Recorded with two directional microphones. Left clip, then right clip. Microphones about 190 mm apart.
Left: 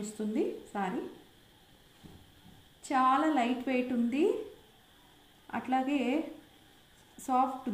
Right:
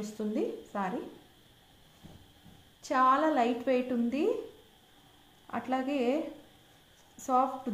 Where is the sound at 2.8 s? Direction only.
20° right (ahead or behind).